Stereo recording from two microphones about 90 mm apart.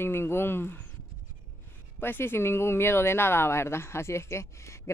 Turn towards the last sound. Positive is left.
turn(degrees=30)  # may be behind; listen again after turning